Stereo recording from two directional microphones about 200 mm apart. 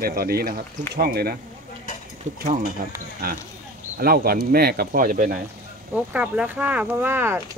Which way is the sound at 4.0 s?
50° right (ahead or behind).